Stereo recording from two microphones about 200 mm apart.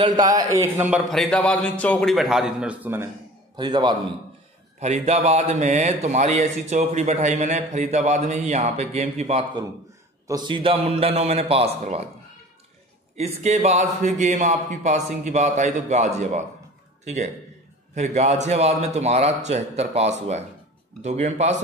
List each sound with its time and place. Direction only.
0.0 s a man's voice: 20° right (ahead or behind)
1.0 s a man's voice: centre (ahead or behind)
3.5 s a man's voice: 20° right (ahead or behind)
4.7 s a man's voice: 35° right (ahead or behind)
13.1 s a man's voice: 35° right (ahead or behind)